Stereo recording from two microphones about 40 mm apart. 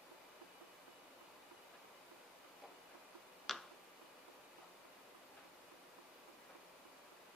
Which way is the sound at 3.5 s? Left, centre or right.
Centre.